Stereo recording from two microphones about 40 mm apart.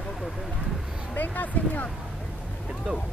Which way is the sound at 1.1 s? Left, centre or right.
Left.